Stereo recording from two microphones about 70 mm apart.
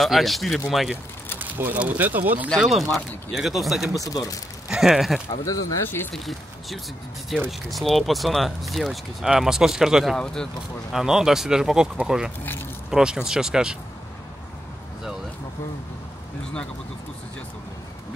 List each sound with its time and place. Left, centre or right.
0.0 s speech: centre
1.4 s speech: right
2.5 s speech: centre
4.0 s speech: left
4.6 s speech: centre
5.4 s speech: left
6.1 s speech: centre
10.1 s speech: centre
10.9 s speech: centre